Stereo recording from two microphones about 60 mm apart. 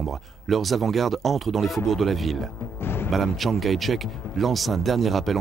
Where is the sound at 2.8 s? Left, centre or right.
Left.